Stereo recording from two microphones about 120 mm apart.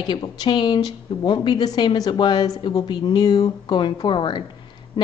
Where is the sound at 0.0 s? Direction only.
35° left (ahead or behind).